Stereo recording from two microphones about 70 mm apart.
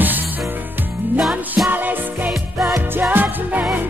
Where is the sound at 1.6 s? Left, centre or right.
Right.